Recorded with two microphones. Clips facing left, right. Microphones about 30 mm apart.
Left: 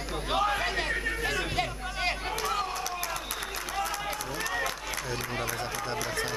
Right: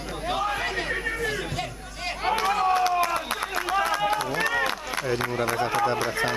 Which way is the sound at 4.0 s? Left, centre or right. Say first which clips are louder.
Right 9 dB; right.